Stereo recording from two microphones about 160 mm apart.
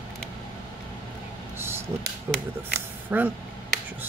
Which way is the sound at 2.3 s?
15° right (ahead or behind).